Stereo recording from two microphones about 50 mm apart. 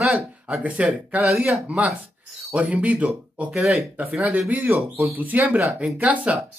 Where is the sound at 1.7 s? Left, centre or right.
Right.